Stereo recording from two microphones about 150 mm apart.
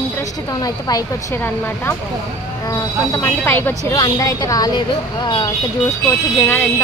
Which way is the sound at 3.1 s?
15° left (ahead or behind).